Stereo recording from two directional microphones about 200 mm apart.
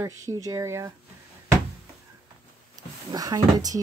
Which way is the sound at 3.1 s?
20° right (ahead or behind).